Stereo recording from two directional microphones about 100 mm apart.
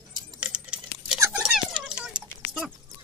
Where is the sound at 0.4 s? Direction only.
10° right (ahead or behind).